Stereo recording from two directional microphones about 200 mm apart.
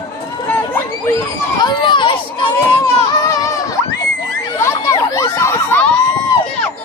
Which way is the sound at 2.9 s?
20° left (ahead or behind).